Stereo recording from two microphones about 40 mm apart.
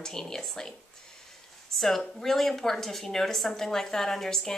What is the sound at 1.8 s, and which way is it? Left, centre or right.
Speech, centre.